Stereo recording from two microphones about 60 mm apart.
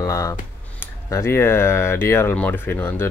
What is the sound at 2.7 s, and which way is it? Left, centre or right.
Speech, left.